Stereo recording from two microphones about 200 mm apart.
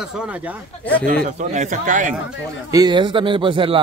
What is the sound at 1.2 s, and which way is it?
Speech, 35° right (ahead or behind).